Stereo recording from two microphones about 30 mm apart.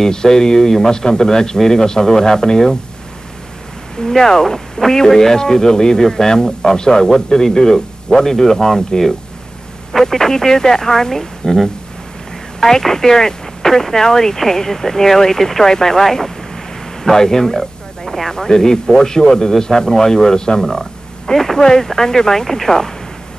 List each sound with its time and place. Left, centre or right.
0.0 s a man's voice: left
4.0 s speech: centre
18.3 s a man's voice: centre
21.3 s speech: centre